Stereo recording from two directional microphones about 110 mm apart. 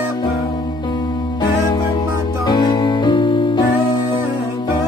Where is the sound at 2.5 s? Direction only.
40° left (ahead or behind).